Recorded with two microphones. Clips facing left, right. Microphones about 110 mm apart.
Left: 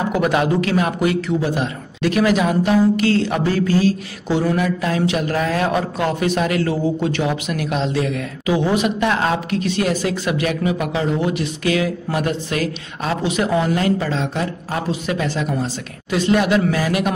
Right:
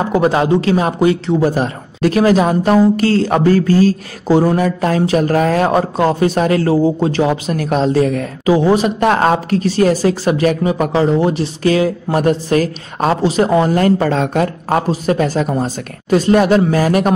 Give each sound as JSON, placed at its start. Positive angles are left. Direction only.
{"t": 0.1, "sound": "speech", "side_deg": -30}
{"t": 1.4, "sound": "speech", "side_deg": -40}
{"t": 14.9, "sound": "speech", "side_deg": -40}